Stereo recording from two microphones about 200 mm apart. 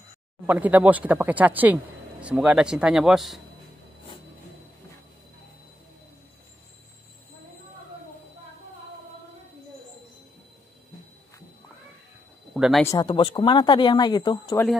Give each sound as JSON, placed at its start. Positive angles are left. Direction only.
{"t": 0.5, "sound": "speech", "side_deg": -10}
{"t": 12.5, "sound": "a sound", "side_deg": -5}
{"t": 12.8, "sound": "speech", "side_deg": 20}